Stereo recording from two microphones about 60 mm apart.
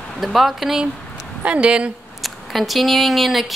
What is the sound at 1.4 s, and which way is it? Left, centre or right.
Speech, centre.